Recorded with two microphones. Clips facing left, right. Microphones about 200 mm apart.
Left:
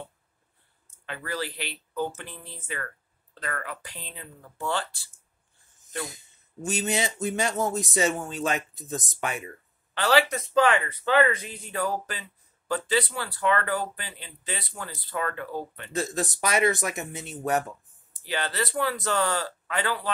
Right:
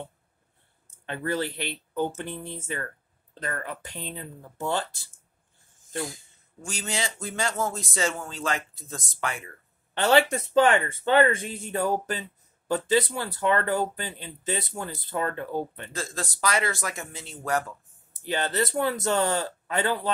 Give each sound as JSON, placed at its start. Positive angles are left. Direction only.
{"t": 1.0, "sound": "speech", "side_deg": -25}
{"t": 6.2, "sound": "speech", "side_deg": 20}
{"t": 9.9, "sound": "speech", "side_deg": -25}
{"t": 15.9, "sound": "speech", "side_deg": 20}
{"t": 18.3, "sound": "speech", "side_deg": -25}